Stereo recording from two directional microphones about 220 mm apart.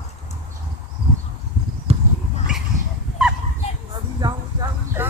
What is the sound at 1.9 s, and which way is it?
Horse, 25° right (ahead or behind).